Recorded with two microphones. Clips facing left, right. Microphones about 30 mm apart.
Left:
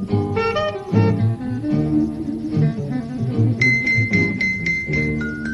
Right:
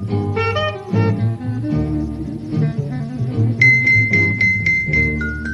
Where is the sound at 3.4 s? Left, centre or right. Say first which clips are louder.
Right 5 dB; centre.